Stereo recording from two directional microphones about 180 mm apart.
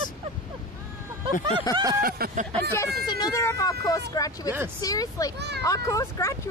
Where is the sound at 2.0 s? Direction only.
55° right (ahead or behind).